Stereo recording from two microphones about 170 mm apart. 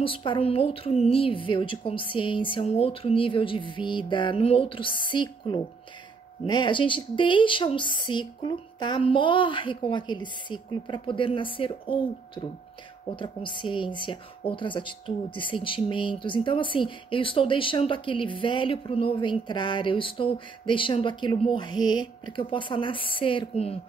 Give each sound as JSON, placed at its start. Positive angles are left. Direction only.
{"t": 0.0, "sound": "a woman's voice", "side_deg": 30}
{"t": 13.1, "sound": "speech", "side_deg": 30}